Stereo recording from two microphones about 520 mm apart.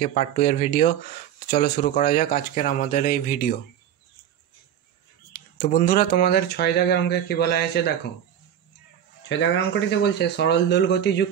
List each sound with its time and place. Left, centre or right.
0.0 s speech: centre
5.6 s speech: centre
9.3 s speech: centre